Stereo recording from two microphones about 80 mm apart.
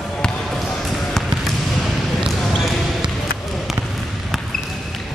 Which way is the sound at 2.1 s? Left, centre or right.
Centre.